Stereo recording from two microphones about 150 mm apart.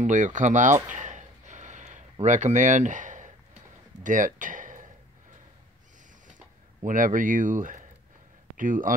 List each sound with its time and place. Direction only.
0.0 s speech: 55° right (ahead or behind)
0.8 s a sound: 55° right (ahead or behind)
2.2 s speech: 55° right (ahead or behind)
6.8 s speech: 60° right (ahead or behind)